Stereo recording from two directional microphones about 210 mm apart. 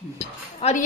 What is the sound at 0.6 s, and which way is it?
Speech, 25° left (ahead or behind).